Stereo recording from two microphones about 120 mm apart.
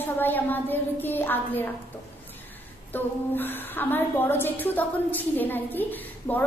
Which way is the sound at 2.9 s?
15° left (ahead or behind).